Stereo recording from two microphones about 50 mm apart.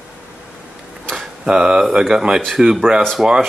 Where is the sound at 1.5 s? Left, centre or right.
Centre.